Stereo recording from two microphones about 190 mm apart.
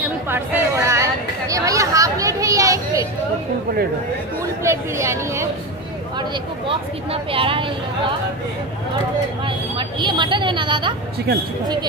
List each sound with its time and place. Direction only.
0.0 s chatter: 10° right (ahead or behind)
4.4 s speech: 15° right (ahead or behind)
6.1 s speech: 25° right (ahead or behind)
9.4 s speech: 25° right (ahead or behind)